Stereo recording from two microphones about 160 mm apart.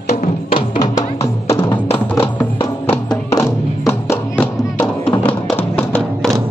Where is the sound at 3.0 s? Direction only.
25° left (ahead or behind); by 6.3 s 5° left (ahead or behind).